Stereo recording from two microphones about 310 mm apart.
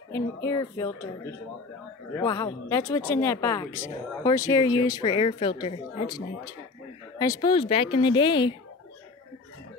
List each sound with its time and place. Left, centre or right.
0.1 s speech: centre
2.1 s speech: centre